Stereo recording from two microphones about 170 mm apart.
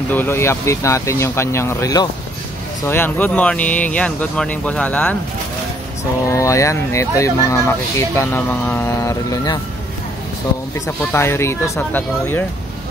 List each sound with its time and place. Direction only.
0.1 s speech: 15° left (ahead or behind)
6.2 s speech: 20° left (ahead or behind)
11.0 s speech: 10° left (ahead or behind)